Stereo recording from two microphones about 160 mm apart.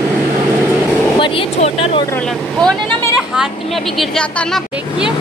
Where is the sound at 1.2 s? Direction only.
35° left (ahead or behind).